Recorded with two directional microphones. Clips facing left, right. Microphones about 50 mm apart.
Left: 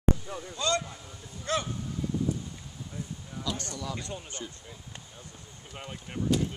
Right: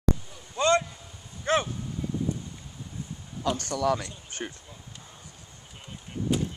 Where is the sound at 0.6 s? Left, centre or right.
Right.